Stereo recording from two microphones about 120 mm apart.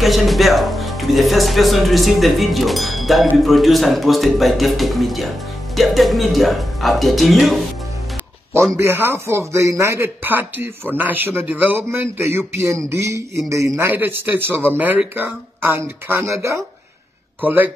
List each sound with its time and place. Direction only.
0.0 s speech: centre (ahead or behind)
8.7 s speech: 20° right (ahead or behind)